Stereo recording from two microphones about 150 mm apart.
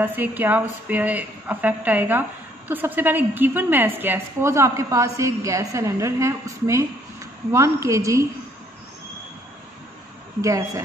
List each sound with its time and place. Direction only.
0.0 s a woman's voice: 10° right (ahead or behind)
10.4 s a woman's voice: 20° right (ahead or behind)